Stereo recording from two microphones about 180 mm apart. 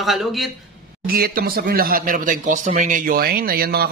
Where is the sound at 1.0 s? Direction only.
55° right (ahead or behind).